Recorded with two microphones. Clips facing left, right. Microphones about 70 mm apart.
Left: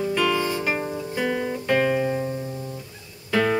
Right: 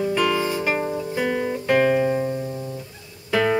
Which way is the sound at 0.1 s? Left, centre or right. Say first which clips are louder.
Right 1 dB; centre.